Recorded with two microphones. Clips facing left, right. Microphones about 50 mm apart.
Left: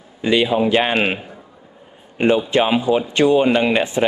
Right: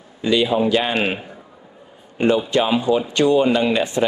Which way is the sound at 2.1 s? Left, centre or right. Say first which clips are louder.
Left 1 dB; left.